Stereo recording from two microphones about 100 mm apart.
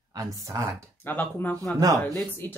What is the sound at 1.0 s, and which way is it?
Speech, 20° left (ahead or behind).